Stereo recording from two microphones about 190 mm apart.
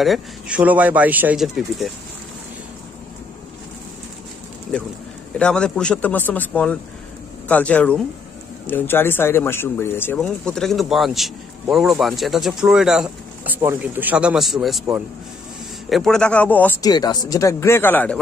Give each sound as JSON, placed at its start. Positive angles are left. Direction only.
{"t": 0.0, "sound": "speech", "side_deg": -5}
{"t": 5.4, "sound": "speech", "side_deg": 5}
{"t": 15.9, "sound": "speech", "side_deg": 0}
{"t": 16.8, "sound": "speech", "side_deg": 20}